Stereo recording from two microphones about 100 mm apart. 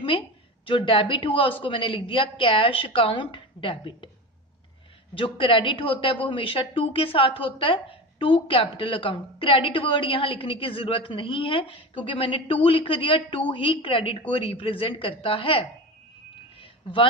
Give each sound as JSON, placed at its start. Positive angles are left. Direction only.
{"t": 0.7, "sound": "speech", "side_deg": 60}
{"t": 5.1, "sound": "speech", "side_deg": 60}
{"t": 16.5, "sound": "a sound", "side_deg": 60}